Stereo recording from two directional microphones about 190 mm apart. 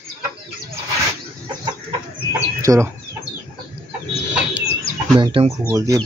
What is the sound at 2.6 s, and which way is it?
Speech, 15° right (ahead or behind).